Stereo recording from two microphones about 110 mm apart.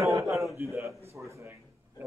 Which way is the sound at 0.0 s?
30° right (ahead or behind).